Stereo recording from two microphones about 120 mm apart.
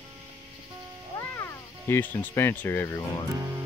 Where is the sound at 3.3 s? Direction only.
25° right (ahead or behind).